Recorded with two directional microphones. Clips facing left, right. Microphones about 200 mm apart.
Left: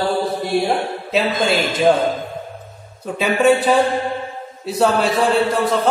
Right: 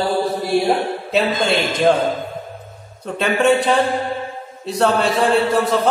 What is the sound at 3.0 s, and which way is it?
A man's voice, 5° left (ahead or behind).